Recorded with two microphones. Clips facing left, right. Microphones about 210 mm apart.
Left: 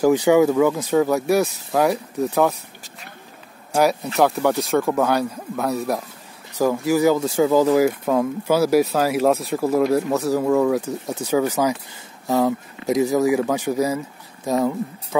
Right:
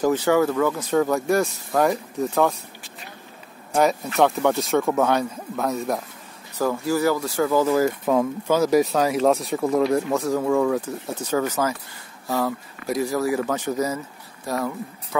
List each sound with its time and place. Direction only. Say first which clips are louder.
0.0 s speech: left 4 dB; 15° left (ahead or behind)
3.7 s speech: left 1 dB; centre (ahead or behind)
6.6 s speech: left 4 dB; 15° left (ahead or behind)